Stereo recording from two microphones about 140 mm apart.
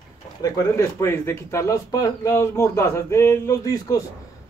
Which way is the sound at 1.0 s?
15° left (ahead or behind).